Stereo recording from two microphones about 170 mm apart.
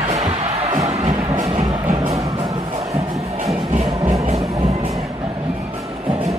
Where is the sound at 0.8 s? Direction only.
20° right (ahead or behind).